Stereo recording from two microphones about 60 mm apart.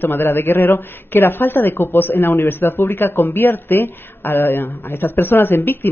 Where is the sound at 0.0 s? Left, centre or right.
Left.